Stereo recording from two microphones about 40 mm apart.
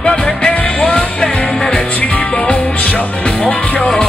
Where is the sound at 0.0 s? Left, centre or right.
Left.